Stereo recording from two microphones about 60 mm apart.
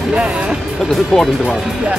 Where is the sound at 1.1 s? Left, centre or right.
Centre.